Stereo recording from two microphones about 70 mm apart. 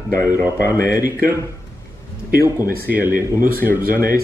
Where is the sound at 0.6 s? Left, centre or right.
Left.